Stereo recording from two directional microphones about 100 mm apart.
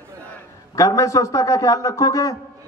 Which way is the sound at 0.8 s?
30° left (ahead or behind).